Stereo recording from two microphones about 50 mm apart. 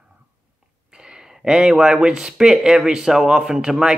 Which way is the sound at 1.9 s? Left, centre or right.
Centre.